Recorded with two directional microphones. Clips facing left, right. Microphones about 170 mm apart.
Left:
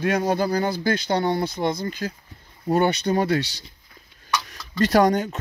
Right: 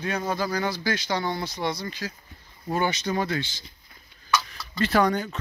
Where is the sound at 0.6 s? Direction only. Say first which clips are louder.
Left 4 dB; 55° left (ahead or behind).